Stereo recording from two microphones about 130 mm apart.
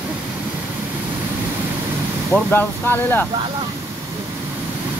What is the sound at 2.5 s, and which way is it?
Speech, 15° left (ahead or behind).